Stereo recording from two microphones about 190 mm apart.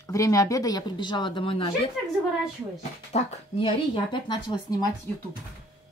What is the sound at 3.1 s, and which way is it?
A woman's voice, 35° left (ahead or behind).